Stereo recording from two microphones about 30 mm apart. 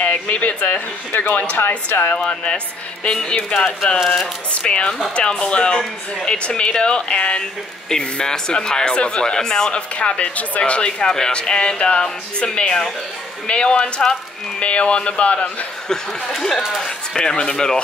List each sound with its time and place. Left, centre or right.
0.0 s speech: left
1.4 s speech: left
2.1 s a man's voice: left
4.6 s a man's voice: left
7.9 s a man's voice: left
9.3 s speech: left
9.7 s speech: left
10.7 s speech: left
11.3 s a man's voice: left
15.9 s speech: centre
17.2 s speech: left